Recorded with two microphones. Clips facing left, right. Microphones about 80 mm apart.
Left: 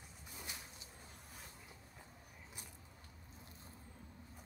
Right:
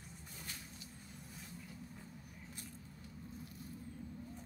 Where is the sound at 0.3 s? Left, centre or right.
Centre.